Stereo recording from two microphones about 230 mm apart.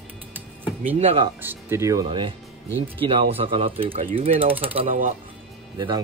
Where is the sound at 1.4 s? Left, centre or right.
Centre.